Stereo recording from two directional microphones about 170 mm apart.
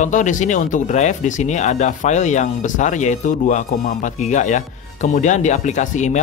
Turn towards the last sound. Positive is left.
turn(degrees=45)  # may be behind; listen again after turning